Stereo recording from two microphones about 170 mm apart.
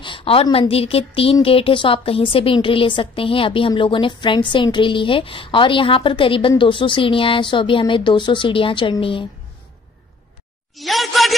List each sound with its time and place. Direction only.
0.0 s a woman's voice: 30° left (ahead or behind)
10.8 s speech: centre (ahead or behind)